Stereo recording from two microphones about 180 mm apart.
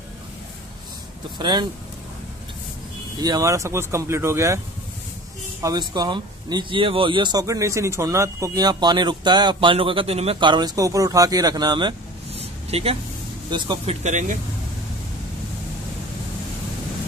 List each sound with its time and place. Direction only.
1.4 s speech: 25° right (ahead or behind)
3.2 s speech: 20° right (ahead or behind)
5.6 s speech: 20° right (ahead or behind)
14.0 s speech: 45° right (ahead or behind)